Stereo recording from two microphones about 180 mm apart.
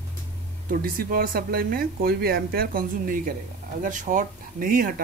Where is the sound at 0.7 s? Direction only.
50° right (ahead or behind).